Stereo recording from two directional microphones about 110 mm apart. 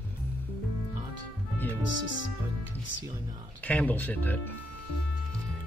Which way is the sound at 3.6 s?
15° left (ahead or behind).